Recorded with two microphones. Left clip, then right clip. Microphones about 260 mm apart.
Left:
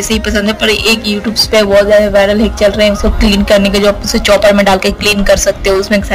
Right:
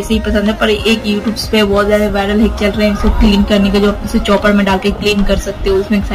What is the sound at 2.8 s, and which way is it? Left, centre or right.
A woman's voice, left.